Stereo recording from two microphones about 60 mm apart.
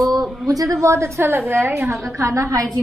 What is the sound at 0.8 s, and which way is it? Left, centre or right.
A woman's voice, right.